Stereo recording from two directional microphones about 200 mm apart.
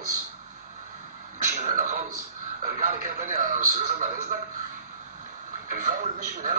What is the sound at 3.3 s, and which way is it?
Speech, 40° right (ahead or behind).